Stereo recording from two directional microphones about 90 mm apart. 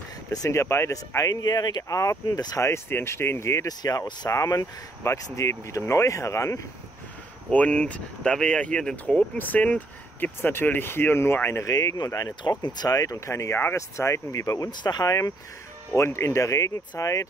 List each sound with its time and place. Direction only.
0.3 s speech: 35° left (ahead or behind)
3.6 s speech: 45° left (ahead or behind)
7.5 s speech: 15° left (ahead or behind)
11.7 s speech: 45° left (ahead or behind)
14.7 s speech: 50° left (ahead or behind)
15.9 s speech: 30° left (ahead or behind)